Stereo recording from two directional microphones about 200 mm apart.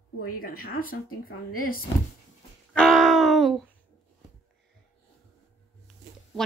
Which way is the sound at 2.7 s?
Centre (ahead or behind).